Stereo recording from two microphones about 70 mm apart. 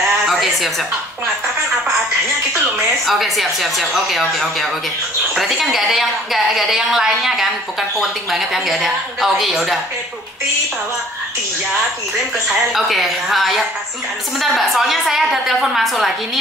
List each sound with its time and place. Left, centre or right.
0.3 s a sound: centre
3.1 s a woman's voice: centre
12.7 s a woman's voice: centre